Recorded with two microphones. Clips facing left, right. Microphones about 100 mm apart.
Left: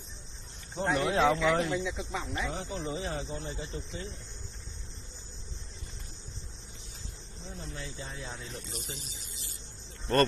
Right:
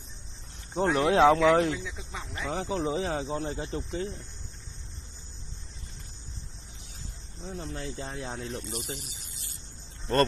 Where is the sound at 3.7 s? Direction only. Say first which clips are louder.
Right 7 dB; 50° right (ahead or behind).